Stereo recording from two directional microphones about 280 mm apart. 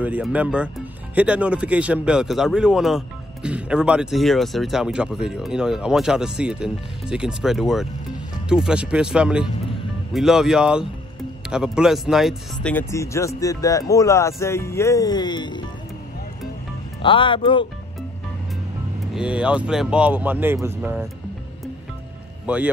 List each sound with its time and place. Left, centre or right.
0.0 s speech: centre
17.0 s speech: centre
19.1 s speech: centre
22.5 s speech: centre